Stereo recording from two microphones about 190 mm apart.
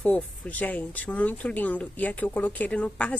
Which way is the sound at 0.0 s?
10° left (ahead or behind).